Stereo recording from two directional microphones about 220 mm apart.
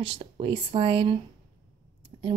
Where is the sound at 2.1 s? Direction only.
25° right (ahead or behind).